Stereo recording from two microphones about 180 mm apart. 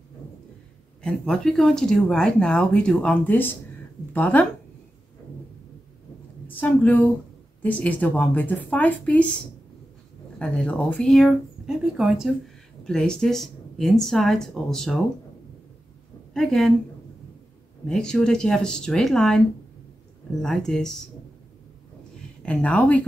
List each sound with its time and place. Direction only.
1.0 s speech: 5° left (ahead or behind)
6.4 s a woman's voice: 10° left (ahead or behind)
10.4 s speech: 5° left (ahead or behind)
16.3 s speech: 5° left (ahead or behind)
17.8 s speech: 5° left (ahead or behind)
20.4 s speech: 5° left (ahead or behind)
22.4 s speech: 5° left (ahead or behind)